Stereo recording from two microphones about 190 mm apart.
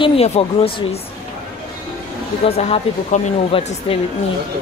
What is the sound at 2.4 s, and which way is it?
Speech, 30° left (ahead or behind).